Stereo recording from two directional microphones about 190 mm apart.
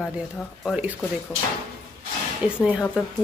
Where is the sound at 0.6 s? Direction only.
5° right (ahead or behind).